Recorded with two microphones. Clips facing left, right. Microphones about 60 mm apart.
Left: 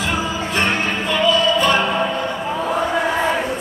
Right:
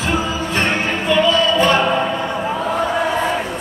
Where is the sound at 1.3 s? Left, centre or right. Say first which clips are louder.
Left 2 dB; right.